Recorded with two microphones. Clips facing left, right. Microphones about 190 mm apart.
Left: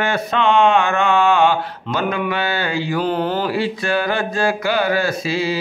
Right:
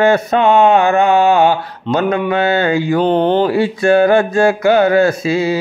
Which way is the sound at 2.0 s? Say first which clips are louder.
Right 6 dB; 25° right (ahead or behind).